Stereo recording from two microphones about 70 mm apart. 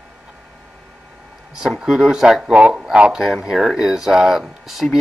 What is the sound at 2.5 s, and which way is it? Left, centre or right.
Speech, centre.